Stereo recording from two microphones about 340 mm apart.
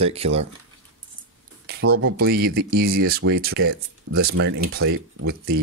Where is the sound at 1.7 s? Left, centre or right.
Right.